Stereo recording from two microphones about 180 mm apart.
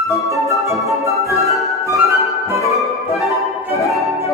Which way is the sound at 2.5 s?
15° right (ahead or behind).